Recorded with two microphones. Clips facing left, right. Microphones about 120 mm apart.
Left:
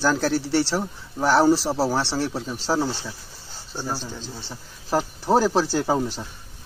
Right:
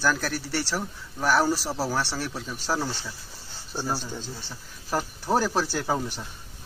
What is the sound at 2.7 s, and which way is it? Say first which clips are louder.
Speech: left 5 dB; 15° left (ahead or behind).